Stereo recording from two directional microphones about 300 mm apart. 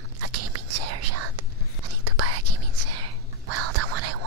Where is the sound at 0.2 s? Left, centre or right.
Right.